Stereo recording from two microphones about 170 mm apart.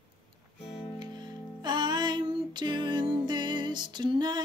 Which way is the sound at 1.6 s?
25° right (ahead or behind).